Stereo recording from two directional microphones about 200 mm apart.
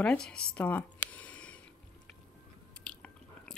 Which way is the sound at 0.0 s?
5° left (ahead or behind).